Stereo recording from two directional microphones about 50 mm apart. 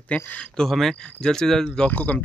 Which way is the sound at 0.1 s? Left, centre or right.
Left.